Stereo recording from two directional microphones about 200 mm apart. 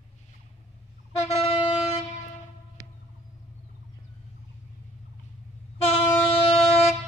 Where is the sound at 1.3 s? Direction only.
30° left (ahead or behind).